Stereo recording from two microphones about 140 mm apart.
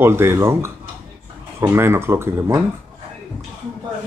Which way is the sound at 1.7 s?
15° right (ahead or behind).